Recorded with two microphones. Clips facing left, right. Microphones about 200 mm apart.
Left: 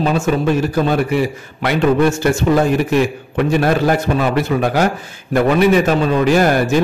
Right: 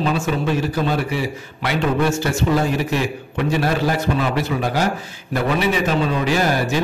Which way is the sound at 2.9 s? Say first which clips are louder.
Left 6 dB; 50° left (ahead or behind).